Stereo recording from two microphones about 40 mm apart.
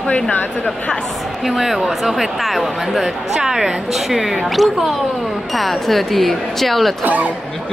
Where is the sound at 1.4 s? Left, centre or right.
Centre.